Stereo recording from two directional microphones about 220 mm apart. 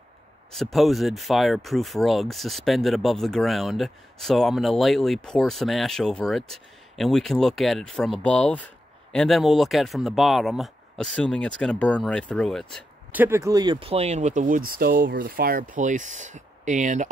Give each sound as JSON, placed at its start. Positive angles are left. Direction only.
{"t": 0.5, "sound": "speech", "side_deg": 0}
{"t": 13.2, "sound": "speech", "side_deg": -10}
{"t": 14.7, "sound": "speech", "side_deg": -45}